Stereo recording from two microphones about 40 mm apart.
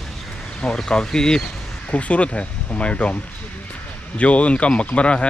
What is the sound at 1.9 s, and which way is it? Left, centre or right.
Speech, left.